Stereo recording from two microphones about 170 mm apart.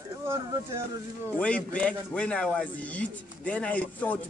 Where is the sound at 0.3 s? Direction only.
15° right (ahead or behind).